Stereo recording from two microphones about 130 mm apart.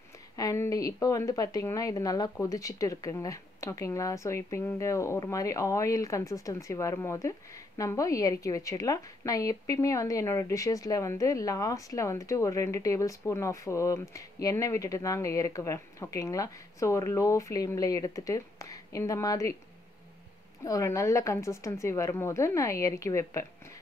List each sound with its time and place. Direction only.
0.4 s speech: 25° left (ahead or behind)
20.6 s speech: 25° left (ahead or behind)